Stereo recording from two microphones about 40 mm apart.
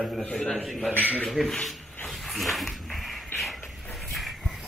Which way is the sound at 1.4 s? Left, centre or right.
Centre.